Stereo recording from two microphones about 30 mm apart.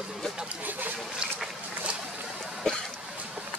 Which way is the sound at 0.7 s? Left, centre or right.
Right.